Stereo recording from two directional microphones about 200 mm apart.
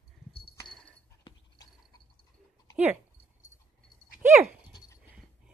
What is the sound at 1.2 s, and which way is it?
Dog, 20° left (ahead or behind).